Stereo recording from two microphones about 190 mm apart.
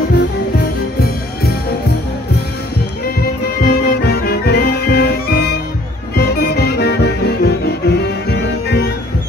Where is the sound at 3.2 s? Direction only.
55° left (ahead or behind).